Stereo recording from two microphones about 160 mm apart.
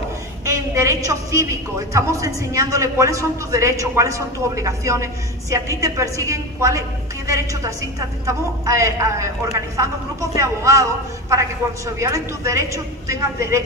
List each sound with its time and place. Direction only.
0.5 s a woman's voice: 20° right (ahead or behind)